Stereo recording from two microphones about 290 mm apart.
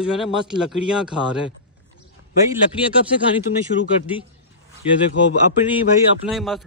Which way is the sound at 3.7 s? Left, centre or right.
Left.